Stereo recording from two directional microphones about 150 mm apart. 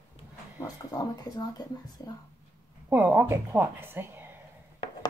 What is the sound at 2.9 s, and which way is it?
A woman's voice, 15° right (ahead or behind).